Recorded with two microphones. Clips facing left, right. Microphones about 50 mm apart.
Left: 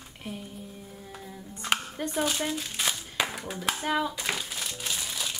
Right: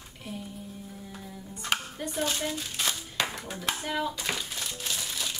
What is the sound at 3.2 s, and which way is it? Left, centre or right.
Speech, centre.